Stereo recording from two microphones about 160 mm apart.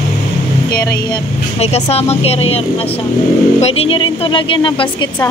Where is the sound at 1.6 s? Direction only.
40° left (ahead or behind).